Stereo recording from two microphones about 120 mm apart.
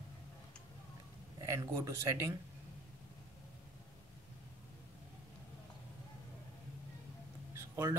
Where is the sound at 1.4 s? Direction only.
25° right (ahead or behind).